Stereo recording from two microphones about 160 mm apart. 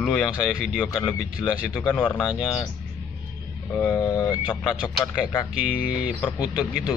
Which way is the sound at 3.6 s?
10° left (ahead or behind).